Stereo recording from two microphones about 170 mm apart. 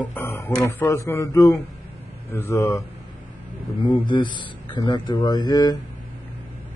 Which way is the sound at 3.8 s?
25° left (ahead or behind).